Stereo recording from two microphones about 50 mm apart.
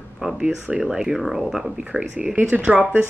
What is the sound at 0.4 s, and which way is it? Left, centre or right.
Speech, centre.